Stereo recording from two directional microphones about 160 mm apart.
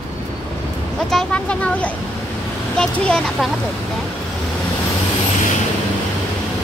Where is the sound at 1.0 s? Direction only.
5° left (ahead or behind).